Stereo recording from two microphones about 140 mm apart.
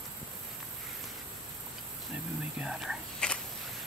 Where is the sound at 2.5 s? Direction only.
5° right (ahead or behind).